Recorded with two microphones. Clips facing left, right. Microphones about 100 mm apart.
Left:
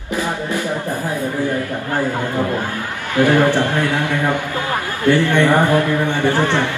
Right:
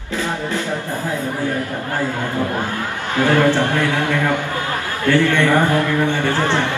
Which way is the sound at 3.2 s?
15° left (ahead or behind).